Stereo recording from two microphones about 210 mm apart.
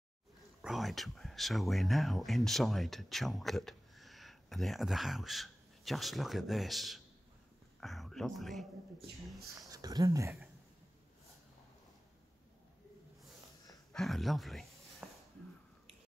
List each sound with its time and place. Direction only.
0.6 s speech: centre (ahead or behind)
9.6 s speech: 15° right (ahead or behind)
13.9 s a sound: centre (ahead or behind)